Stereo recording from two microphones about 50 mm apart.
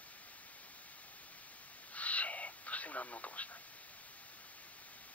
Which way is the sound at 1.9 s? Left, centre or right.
Left.